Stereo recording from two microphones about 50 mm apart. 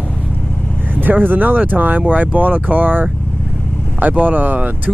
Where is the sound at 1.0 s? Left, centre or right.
Right.